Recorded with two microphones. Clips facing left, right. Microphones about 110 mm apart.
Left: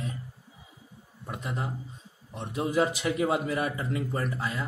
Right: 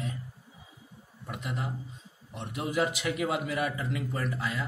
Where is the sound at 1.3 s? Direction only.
35° left (ahead or behind).